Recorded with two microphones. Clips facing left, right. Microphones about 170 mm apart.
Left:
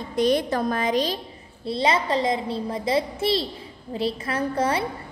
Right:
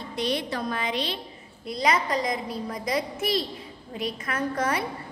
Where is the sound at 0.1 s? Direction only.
45° left (ahead or behind).